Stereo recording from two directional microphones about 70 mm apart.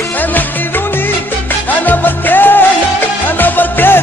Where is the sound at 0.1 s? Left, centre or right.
Left.